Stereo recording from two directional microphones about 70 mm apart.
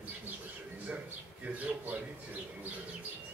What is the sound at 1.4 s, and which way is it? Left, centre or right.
Speech, right.